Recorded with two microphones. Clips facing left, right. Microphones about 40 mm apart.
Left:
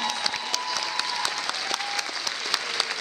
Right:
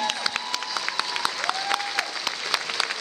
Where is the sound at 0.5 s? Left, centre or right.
Centre.